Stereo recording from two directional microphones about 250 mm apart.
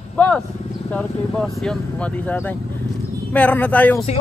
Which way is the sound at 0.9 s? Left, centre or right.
Centre.